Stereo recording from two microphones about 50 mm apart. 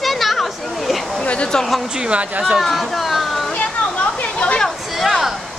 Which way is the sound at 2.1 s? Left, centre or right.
Right.